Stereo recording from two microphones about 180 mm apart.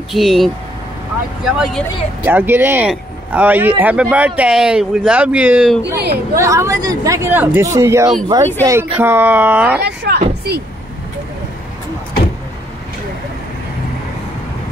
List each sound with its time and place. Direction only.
0.1 s speech: centre (ahead or behind)
2.2 s speech: 10° right (ahead or behind)
5.8 s speech: 65° right (ahead or behind)
6.3 s speech: 15° right (ahead or behind)
9.8 s speech: 65° right (ahead or behind)